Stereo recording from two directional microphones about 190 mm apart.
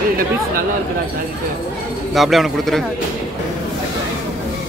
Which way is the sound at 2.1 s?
Centre (ahead or behind).